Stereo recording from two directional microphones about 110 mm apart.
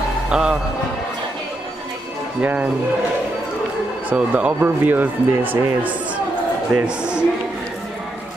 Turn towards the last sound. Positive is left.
turn(degrees=-10)  # may be behind; listen again after turning